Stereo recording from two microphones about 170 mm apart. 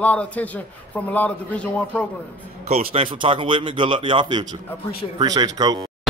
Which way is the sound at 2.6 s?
35° right (ahead or behind).